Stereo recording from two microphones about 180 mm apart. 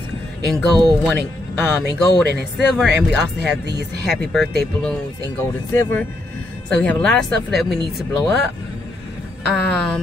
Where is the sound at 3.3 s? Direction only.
75° right (ahead or behind).